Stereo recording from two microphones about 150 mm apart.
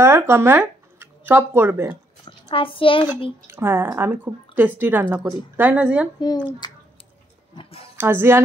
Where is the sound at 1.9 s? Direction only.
35° left (ahead or behind).